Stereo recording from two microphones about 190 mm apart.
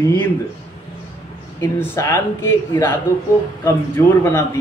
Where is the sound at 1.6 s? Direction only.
15° left (ahead or behind).